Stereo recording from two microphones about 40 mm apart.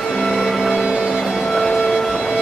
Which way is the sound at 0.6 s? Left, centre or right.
Right.